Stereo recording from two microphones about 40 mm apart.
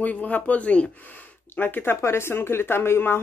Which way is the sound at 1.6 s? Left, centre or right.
Left.